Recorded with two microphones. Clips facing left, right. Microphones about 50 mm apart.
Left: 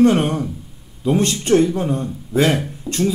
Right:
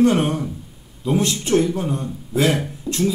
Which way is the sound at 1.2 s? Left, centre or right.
Left.